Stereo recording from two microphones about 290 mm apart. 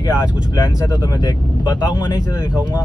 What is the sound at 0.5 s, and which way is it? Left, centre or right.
Speech, centre.